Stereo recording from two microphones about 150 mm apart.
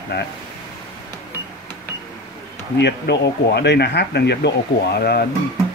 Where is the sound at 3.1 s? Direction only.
90° left.